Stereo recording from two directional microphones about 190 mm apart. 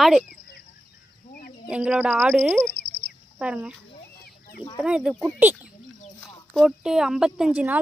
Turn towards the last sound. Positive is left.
turn(degrees=-10)  # may be behind; listen again after turning